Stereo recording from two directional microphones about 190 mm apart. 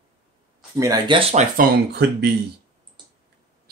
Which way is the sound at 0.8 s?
20° right (ahead or behind).